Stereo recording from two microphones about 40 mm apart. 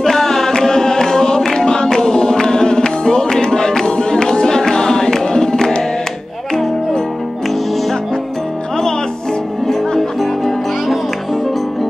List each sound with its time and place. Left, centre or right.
0.0 s music: centre
9.7 s music: centre